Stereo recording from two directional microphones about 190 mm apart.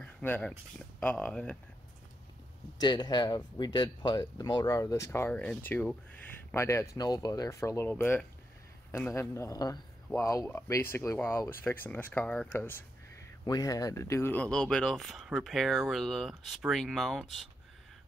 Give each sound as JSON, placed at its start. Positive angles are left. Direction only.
{"t": 0.0, "sound": "speech", "side_deg": 10}
{"t": 2.8, "sound": "speech", "side_deg": 20}